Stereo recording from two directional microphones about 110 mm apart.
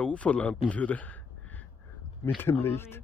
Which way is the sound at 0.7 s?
15° left (ahead or behind).